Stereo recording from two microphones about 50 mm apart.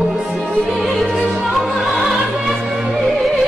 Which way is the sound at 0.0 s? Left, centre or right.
Centre.